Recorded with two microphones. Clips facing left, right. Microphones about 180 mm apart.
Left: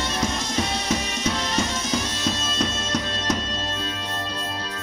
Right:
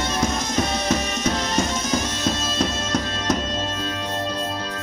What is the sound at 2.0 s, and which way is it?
Bagpipes, 45° right (ahead or behind).